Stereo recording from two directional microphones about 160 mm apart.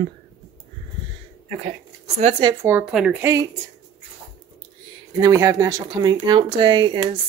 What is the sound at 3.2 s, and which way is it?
Speech, 15° right (ahead or behind).